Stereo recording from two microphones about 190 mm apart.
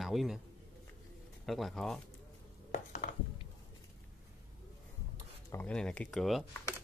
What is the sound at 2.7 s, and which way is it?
Dishes, 40° left (ahead or behind).